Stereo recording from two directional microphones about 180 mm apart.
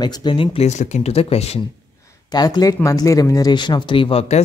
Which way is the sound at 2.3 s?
20° left (ahead or behind).